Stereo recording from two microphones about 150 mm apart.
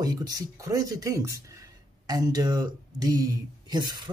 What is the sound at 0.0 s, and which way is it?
Speech, 25° right (ahead or behind).